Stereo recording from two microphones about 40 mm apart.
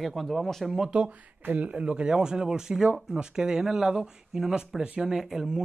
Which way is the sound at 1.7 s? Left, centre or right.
Right.